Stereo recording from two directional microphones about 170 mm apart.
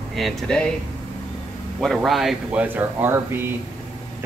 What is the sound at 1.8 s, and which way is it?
Speech, centre (ahead or behind).